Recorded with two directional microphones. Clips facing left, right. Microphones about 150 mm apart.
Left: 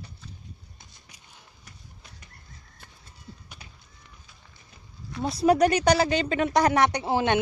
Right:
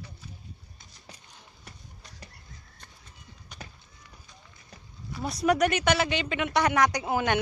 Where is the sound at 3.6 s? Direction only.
45° right (ahead or behind).